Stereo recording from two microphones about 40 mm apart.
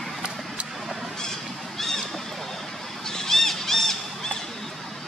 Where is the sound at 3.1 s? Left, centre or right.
Centre.